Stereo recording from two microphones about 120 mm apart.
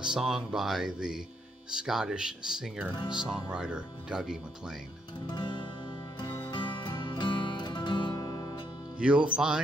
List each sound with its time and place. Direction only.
0.0 s speech: 5° right (ahead or behind)
5.2 s music: 40° left (ahead or behind)
8.9 s speech: 10° right (ahead or behind)